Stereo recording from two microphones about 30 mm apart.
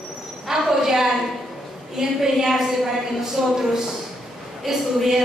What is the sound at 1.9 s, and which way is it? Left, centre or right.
A woman's voice, centre.